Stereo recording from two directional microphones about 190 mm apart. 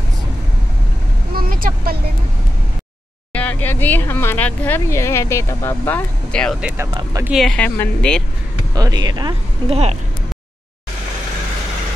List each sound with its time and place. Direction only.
1.3 s vehicle: 50° right (ahead or behind)
3.3 s speech: 10° left (ahead or behind)
8.7 s speech: 20° right (ahead or behind)